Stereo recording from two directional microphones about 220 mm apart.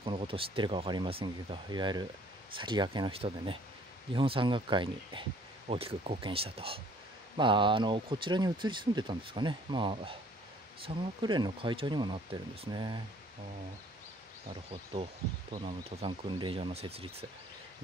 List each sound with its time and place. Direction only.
0.0 s speech: 25° right (ahead or behind)
14.9 s speech: 25° right (ahead or behind)